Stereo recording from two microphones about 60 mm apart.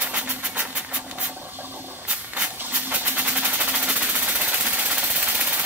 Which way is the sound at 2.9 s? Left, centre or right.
Right.